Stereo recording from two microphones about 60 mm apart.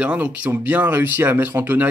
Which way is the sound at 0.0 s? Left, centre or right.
Right.